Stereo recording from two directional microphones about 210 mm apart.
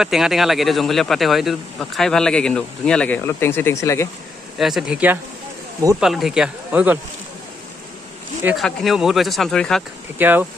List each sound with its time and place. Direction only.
0.0 s speech: centre (ahead or behind); by 4.1 s 15° left (ahead or behind)
4.6 s speech: centre (ahead or behind)
8.5 s speech: centre (ahead or behind)
10.1 s speech: 10° right (ahead or behind)